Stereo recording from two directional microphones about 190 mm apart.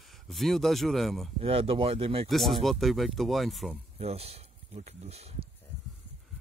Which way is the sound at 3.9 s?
30° right (ahead or behind).